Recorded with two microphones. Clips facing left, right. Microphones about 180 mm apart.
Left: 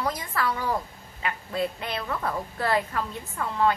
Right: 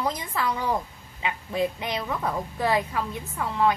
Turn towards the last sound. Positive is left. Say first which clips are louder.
# right 1 dB
turn(degrees=-10)  # may be behind; listen again after turning